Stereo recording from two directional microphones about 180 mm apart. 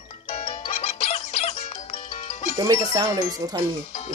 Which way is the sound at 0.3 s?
40° left (ahead or behind).